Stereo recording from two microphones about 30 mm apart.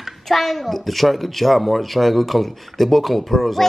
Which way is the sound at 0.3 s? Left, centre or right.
Centre.